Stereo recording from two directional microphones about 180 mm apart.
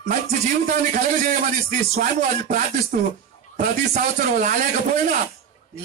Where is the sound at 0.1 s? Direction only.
45° right (ahead or behind).